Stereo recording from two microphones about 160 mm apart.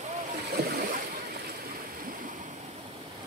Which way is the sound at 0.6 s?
90° right.